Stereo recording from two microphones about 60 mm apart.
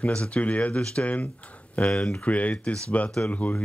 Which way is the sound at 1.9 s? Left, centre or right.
Centre.